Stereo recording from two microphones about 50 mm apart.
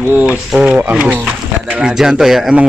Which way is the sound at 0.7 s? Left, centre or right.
Right.